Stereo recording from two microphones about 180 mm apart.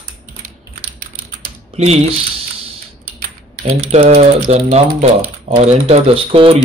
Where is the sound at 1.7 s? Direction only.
35° right (ahead or behind).